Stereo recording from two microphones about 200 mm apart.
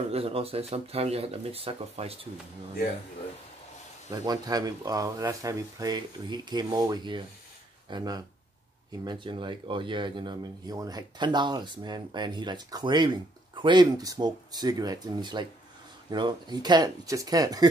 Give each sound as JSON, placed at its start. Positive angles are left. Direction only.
{"t": 0.1, "sound": "speech", "side_deg": -30}
{"t": 4.1, "sound": "speech", "side_deg": -20}